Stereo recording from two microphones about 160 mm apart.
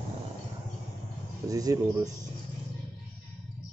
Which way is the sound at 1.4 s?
20° right (ahead or behind).